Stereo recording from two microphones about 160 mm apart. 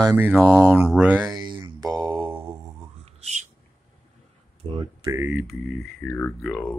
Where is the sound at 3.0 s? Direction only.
40° right (ahead or behind).